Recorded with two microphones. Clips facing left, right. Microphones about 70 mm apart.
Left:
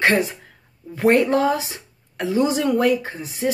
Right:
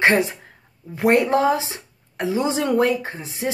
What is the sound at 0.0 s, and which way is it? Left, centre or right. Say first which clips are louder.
Speech: right 1 dB; right.